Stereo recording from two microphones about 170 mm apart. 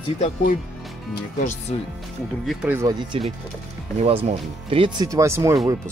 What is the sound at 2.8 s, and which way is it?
Speech, 25° right (ahead or behind).